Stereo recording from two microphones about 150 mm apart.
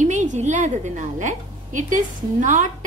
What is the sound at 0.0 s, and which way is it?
A woman's voice, 55° right (ahead or behind).